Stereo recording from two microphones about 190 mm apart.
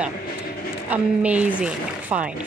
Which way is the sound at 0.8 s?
5° right (ahead or behind).